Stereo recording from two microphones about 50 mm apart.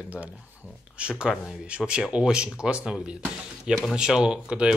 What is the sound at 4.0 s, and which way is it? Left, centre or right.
Speech, centre.